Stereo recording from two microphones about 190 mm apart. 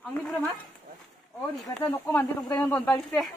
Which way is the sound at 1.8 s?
15° left (ahead or behind).